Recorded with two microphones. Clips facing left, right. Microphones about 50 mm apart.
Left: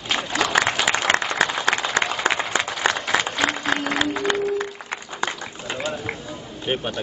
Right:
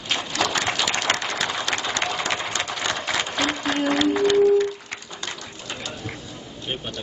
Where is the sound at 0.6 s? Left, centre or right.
Left.